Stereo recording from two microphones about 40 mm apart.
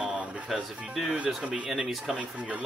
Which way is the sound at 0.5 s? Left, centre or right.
Centre.